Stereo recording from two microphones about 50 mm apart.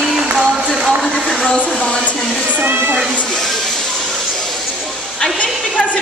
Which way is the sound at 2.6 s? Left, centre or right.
Right.